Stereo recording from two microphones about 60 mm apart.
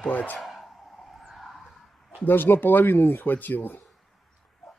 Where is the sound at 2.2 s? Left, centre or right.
Left.